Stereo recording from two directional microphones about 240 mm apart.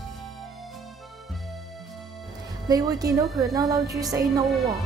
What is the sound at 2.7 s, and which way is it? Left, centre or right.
A woman's voice, centre.